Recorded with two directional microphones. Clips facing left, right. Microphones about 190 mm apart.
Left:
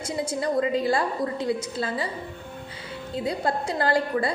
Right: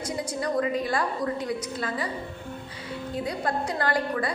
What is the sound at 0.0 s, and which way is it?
A woman's voice, 25° left (ahead or behind).